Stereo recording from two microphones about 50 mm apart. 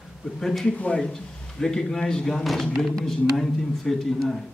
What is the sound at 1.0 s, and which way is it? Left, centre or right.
A man's voice, centre.